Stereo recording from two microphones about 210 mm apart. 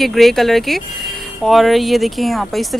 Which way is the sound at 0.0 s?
Centre (ahead or behind).